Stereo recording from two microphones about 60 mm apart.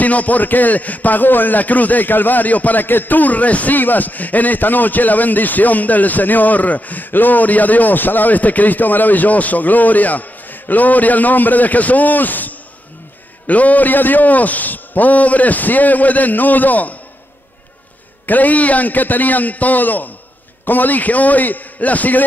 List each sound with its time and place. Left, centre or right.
0.0 s a man's voice: left
18.2 s a man's voice: left